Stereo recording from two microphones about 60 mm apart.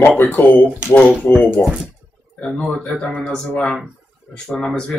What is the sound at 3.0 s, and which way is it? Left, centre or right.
Speech, centre.